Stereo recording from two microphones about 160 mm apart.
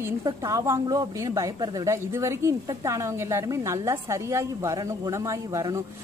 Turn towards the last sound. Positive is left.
turn(degrees=-20)  # may be behind; listen again after turning